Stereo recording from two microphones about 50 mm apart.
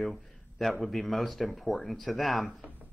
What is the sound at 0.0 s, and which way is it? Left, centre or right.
Speech, centre.